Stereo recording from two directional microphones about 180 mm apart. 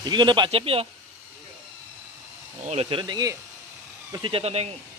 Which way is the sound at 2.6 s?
30° right (ahead or behind).